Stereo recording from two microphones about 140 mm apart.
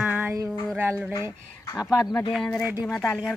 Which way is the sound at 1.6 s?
20° left (ahead or behind).